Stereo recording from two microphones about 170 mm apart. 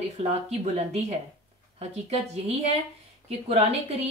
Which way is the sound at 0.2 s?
40° right (ahead or behind).